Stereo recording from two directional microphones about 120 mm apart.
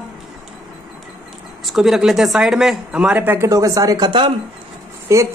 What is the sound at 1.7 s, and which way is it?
Speech, centre (ahead or behind).